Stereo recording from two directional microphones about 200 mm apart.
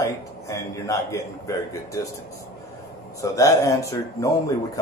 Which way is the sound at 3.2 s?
15° left (ahead or behind).